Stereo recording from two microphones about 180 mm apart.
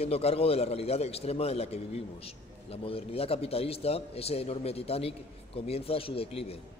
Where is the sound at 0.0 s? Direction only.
35° left (ahead or behind).